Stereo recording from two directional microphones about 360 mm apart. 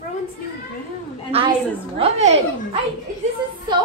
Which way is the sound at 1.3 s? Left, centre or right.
Centre.